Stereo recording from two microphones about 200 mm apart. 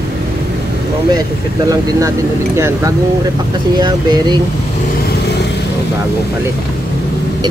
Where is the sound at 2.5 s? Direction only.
15° right (ahead or behind).